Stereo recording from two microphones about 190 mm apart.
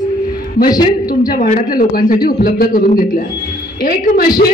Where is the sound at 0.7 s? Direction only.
20° left (ahead or behind).